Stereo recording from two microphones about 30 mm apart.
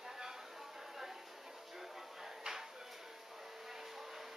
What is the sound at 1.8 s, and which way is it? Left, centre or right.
Music, centre.